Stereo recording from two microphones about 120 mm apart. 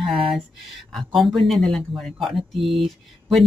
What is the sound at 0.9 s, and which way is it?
Speech, centre (ahead or behind).